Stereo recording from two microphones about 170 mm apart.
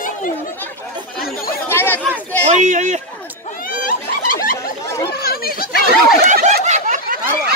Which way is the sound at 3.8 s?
55° left (ahead or behind).